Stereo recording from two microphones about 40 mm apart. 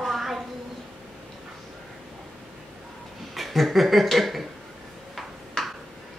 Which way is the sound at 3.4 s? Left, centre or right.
Centre.